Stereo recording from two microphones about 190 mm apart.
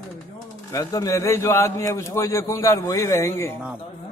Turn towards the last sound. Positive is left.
turn(degrees=15)  # may be behind; listen again after turning